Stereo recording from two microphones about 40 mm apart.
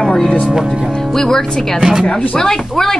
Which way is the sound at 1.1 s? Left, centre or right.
Centre.